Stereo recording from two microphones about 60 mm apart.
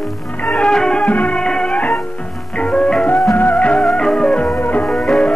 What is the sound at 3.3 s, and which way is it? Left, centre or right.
Music, left.